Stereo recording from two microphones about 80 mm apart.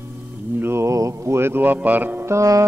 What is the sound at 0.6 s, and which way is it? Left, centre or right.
Speech, right.